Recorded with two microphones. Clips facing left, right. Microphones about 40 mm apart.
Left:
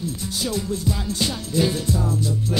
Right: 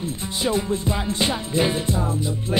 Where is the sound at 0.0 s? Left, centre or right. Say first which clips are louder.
Right 2 dB; right.